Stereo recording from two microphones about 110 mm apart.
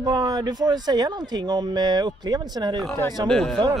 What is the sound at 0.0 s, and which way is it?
Speech, 35° right (ahead or behind).